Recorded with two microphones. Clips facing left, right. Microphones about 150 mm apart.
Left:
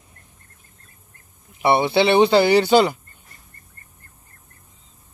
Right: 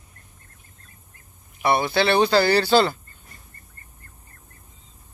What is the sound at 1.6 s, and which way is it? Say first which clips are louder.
Speech: left 4 dB; 25° left (ahead or behind).